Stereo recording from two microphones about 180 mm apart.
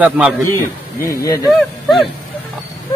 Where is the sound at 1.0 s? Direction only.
15° left (ahead or behind).